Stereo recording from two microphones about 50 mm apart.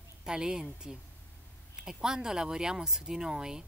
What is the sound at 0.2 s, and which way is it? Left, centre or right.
A woman's voice, centre.